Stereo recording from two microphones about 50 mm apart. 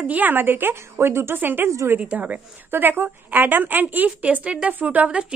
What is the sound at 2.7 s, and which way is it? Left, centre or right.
A woman's voice, right.